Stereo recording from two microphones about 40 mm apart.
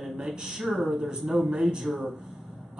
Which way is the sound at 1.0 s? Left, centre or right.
Centre.